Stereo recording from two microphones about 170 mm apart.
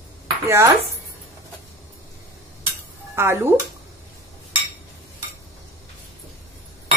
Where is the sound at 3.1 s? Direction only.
15° right (ahead or behind).